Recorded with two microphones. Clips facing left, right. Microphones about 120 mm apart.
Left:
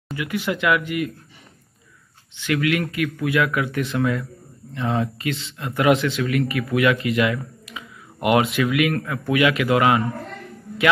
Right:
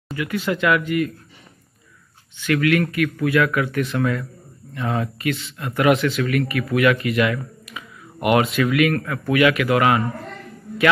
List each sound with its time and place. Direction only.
0.1 s speech: 15° left (ahead or behind)
2.4 s speech: 20° left (ahead or behind)